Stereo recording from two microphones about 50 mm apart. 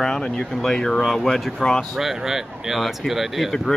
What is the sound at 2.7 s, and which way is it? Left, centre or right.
Speech, centre.